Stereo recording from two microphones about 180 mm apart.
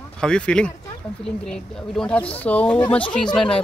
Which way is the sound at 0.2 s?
5° left (ahead or behind).